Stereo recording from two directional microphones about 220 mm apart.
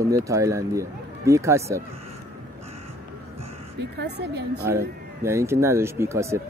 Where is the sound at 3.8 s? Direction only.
50° right (ahead or behind).